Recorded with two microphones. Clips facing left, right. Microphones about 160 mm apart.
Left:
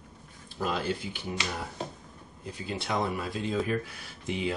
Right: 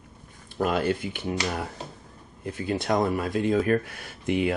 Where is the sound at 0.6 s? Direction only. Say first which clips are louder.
Right 6 dB; 55° right (ahead or behind).